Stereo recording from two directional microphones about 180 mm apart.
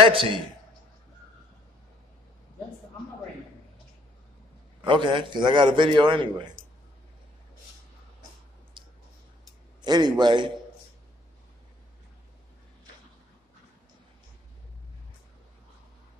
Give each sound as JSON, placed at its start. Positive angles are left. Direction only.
{"t": 0.0, "sound": "a man's voice", "side_deg": -30}
{"t": 4.8, "sound": "a man's voice", "side_deg": -25}
{"t": 8.8, "sound": "clicking", "side_deg": -30}
{"t": 9.8, "sound": "a man's voice", "side_deg": -25}